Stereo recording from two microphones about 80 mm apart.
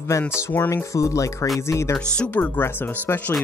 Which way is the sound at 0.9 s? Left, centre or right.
Left.